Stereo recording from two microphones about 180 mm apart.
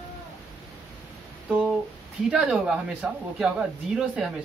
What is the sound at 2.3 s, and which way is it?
Speech, 5° right (ahead or behind).